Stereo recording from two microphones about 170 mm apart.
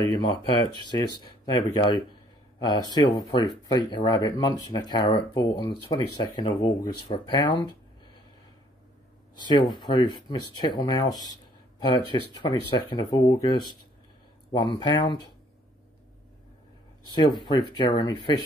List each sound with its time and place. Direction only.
0.1 s speech: 25° left (ahead or behind)
9.4 s speech: 25° left (ahead or behind)
17.0 s speech: 25° left (ahead or behind)